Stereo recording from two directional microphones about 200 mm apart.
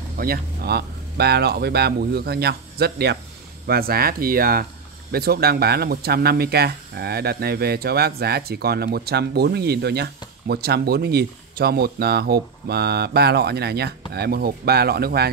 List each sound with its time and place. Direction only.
0.2 s speech: 50° right (ahead or behind)